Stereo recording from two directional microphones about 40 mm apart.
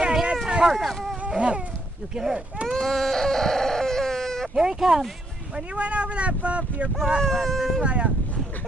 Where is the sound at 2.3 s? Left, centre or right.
Right.